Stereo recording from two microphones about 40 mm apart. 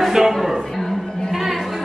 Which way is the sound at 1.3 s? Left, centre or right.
Centre.